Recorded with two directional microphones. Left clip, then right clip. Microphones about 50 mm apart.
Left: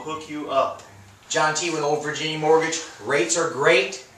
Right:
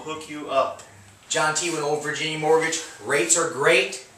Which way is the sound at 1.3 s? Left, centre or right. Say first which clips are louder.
Left 1 dB; centre.